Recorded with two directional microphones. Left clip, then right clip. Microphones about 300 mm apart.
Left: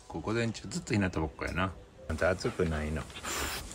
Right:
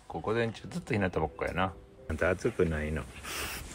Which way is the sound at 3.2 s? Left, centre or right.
Left.